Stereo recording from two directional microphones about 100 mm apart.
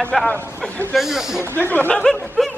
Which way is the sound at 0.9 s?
5° right (ahead or behind).